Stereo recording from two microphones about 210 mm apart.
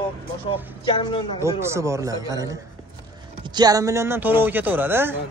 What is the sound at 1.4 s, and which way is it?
Speech, 15° right (ahead or behind).